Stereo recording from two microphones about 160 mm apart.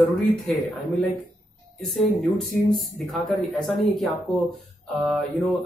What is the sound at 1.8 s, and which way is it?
Speech, centre (ahead or behind).